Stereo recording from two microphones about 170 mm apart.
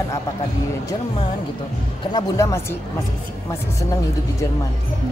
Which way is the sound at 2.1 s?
20° left (ahead or behind).